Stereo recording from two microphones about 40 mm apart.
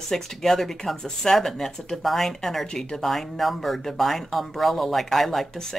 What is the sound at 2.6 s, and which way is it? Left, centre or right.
Speech, centre.